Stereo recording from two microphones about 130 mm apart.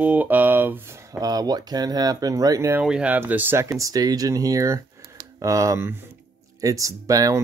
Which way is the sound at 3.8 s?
30° right (ahead or behind).